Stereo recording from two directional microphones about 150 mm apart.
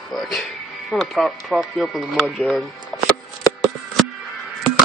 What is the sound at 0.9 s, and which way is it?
Speech, 5° left (ahead or behind).